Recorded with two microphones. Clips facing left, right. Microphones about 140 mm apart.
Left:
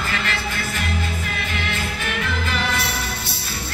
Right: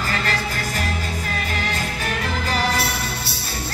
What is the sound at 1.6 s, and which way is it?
Music, 40° right (ahead or behind).